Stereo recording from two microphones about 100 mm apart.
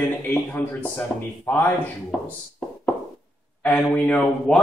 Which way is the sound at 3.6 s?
15° left (ahead or behind).